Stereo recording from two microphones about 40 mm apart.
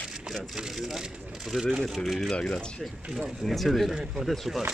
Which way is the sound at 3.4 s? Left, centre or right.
Centre.